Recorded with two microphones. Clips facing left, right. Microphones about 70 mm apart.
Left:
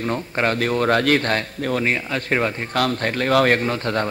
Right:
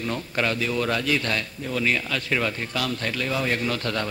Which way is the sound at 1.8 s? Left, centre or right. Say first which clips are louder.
Right 2 dB; left.